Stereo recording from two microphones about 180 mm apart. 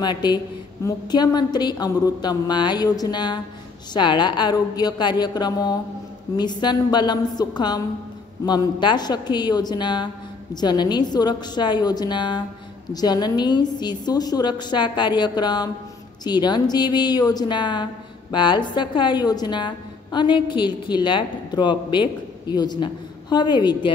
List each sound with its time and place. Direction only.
0.0 s a woman's voice: 25° left (ahead or behind)